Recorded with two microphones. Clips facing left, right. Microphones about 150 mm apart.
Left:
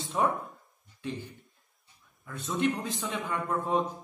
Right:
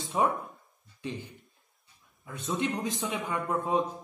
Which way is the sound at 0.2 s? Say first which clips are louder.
Right 1 dB; 15° right (ahead or behind).